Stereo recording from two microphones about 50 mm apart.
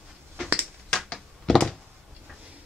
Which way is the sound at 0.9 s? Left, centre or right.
Centre.